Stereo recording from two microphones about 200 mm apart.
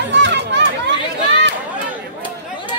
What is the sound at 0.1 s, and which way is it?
Chatter, 60° right (ahead or behind).